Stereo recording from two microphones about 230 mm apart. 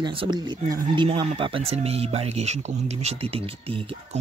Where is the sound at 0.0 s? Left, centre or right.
Right.